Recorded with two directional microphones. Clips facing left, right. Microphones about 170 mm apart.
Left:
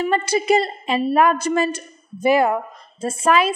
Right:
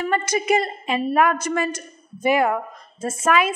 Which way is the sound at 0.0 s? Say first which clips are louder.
Left 3 dB; 30° left (ahead or behind).